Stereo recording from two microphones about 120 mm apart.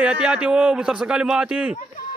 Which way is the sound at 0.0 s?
10° right (ahead or behind).